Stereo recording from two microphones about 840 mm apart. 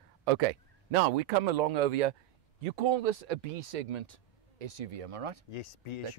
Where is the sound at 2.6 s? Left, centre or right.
Right.